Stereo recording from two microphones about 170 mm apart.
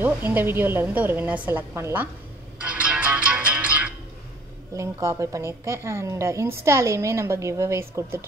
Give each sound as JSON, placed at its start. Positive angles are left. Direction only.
{"t": 0.0, "sound": "a woman's voice", "side_deg": -10}
{"t": 2.6, "sound": "music", "side_deg": -5}
{"t": 4.7, "sound": "a woman's voice", "side_deg": -20}